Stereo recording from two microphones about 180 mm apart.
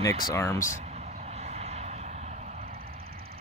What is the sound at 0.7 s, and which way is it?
Vehicle, 35° right (ahead or behind).